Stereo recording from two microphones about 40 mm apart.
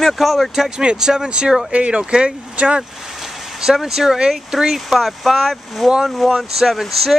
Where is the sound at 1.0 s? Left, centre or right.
Centre.